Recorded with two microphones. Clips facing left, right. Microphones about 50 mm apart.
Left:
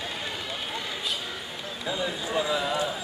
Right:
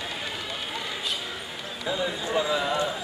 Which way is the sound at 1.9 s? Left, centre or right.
Centre.